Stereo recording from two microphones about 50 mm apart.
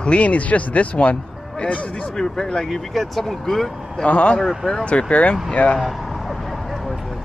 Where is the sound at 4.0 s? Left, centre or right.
Left.